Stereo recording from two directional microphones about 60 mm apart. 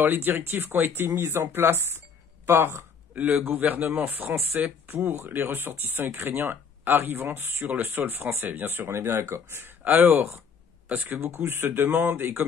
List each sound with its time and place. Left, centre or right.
0.0 s speech: right
3.2 s a man's voice: right
9.8 s speech: right